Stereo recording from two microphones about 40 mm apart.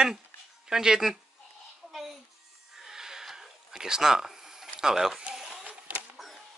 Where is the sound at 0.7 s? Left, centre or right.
Centre.